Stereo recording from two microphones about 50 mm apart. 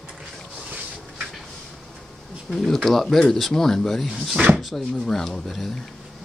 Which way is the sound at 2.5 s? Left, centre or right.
Centre.